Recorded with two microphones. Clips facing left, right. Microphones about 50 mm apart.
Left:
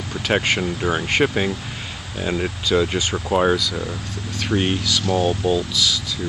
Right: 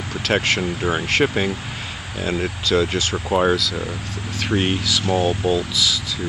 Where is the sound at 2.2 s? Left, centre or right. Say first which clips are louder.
Even; centre.